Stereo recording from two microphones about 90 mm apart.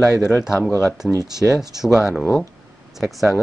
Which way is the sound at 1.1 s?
40° right (ahead or behind).